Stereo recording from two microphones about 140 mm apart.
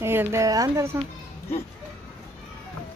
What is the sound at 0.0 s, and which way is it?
Speech, 15° right (ahead or behind).